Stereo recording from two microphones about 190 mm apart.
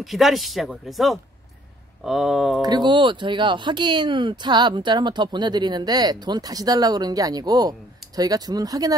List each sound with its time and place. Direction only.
0.0 s speech: centre (ahead or behind)
2.6 s speech: 20° right (ahead or behind)